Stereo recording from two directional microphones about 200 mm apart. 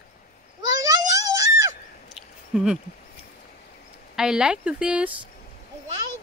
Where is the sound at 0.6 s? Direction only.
15° right (ahead or behind).